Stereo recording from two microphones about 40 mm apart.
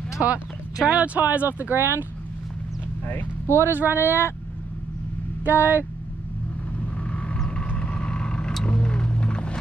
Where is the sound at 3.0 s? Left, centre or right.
Left.